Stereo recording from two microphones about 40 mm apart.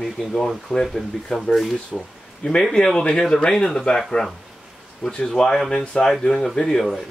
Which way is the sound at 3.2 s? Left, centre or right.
Centre.